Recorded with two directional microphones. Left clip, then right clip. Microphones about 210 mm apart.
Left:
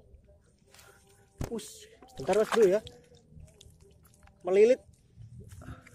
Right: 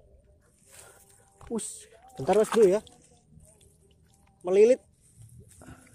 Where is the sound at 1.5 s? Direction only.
20° right (ahead or behind).